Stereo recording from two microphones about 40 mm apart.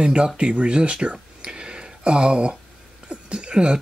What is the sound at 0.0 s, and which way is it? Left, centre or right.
Speech, right.